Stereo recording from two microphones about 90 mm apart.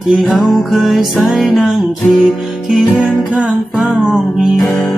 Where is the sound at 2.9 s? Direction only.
15° right (ahead or behind).